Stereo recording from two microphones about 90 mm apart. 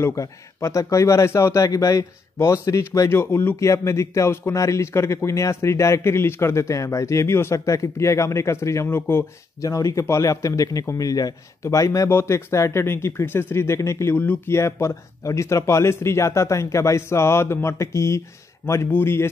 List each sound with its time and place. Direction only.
0.0 s speech: 35° left (ahead or behind)
9.7 s speech: 40° left (ahead or behind)
14.1 s a man's voice: 20° left (ahead or behind)